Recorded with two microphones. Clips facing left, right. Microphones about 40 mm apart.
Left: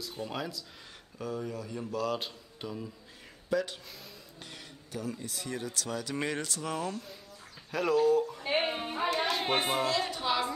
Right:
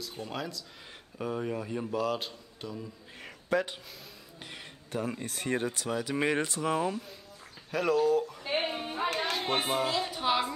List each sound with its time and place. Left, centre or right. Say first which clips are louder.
0.0 s speech: even; centre
1.1 s speech: right 3 dB; right
1.4 s speech: right 4 dB; right
1.8 s speech: right 1 dB; centre
2.0 s a man's voice: right 1 dB; centre
3.5 s speech: right 2 dB; right
4.9 s speech: right 4 dB; right
5.8 s speech: right 3 dB; centre
7.7 s speech: even; centre
8.5 s a sound: left 1 dB; centre
10.1 s music: right 2 dB; centre